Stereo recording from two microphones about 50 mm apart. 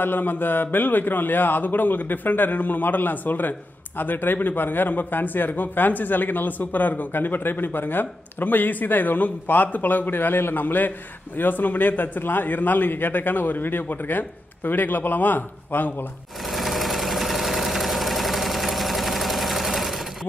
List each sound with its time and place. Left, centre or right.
0.0 s a man's voice: left
16.4 s engine: centre